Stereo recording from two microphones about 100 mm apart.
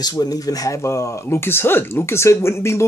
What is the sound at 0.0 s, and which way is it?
Speech, 40° left (ahead or behind).